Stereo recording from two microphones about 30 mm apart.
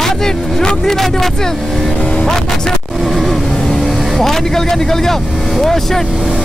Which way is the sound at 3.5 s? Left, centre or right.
Centre.